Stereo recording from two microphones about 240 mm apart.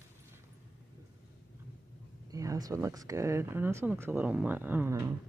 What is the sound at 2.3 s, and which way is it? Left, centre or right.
Speech, centre.